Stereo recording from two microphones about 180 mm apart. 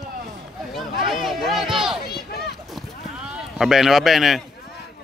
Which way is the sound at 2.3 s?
65° left (ahead or behind).